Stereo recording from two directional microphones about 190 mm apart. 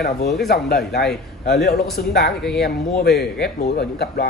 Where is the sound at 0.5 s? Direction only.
55° left (ahead or behind).